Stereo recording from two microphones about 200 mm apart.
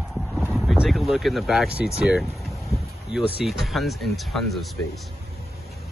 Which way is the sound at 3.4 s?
Centre (ahead or behind).